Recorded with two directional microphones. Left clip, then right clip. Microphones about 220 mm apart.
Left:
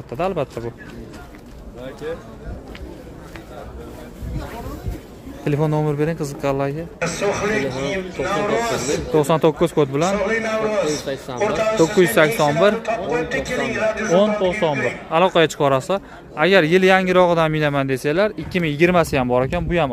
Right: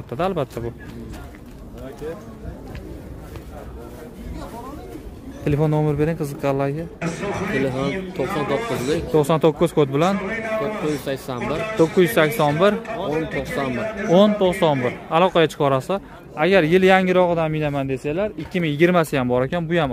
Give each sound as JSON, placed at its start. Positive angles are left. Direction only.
{"t": 0.1, "sound": "speech", "side_deg": -10}
{"t": 5.4, "sound": "a man's voice", "side_deg": -5}
{"t": 7.0, "sound": "a man's voice", "side_deg": 40}
{"t": 9.1, "sound": "a man's voice", "side_deg": 0}
{"t": 10.1, "sound": "a man's voice", "side_deg": 40}
{"t": 12.0, "sound": "a man's voice", "side_deg": 0}
{"t": 12.7, "sound": "a man's voice", "side_deg": 40}
{"t": 14.4, "sound": "speech", "side_deg": -20}
{"t": 15.0, "sound": "a man's voice", "side_deg": -5}
{"t": 17.2, "sound": "speech", "side_deg": 10}
{"t": 18.6, "sound": "a man's voice", "side_deg": 0}